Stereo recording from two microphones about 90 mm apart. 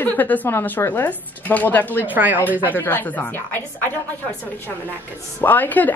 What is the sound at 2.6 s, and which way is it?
A woman's voice, 20° left (ahead or behind).